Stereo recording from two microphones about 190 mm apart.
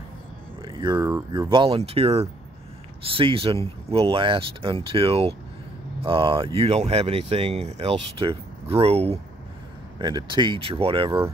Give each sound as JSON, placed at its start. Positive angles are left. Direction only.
{"t": 0.6, "sound": "speech", "side_deg": -25}